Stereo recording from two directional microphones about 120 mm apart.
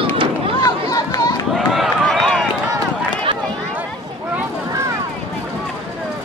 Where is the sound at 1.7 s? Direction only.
Centre (ahead or behind).